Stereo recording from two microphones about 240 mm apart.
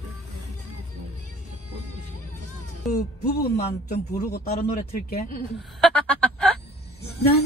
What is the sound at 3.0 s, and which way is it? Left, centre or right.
A man's voice, left.